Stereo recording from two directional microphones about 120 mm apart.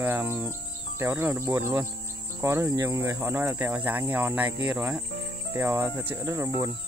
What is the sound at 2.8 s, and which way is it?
Speech, 25° right (ahead or behind).